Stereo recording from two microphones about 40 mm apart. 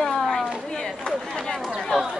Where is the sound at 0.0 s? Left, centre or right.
Centre.